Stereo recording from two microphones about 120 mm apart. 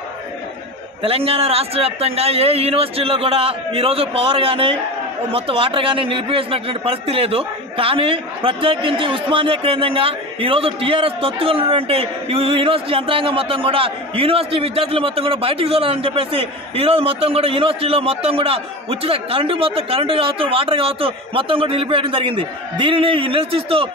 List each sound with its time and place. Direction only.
1.0 s a man's voice: 55° right (ahead or behind)